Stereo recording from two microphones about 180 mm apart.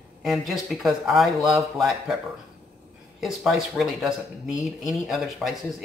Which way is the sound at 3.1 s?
Centre (ahead or behind).